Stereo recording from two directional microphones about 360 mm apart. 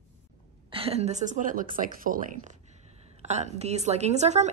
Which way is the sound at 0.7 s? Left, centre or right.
Centre.